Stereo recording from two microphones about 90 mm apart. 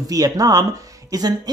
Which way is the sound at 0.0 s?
40° right (ahead or behind).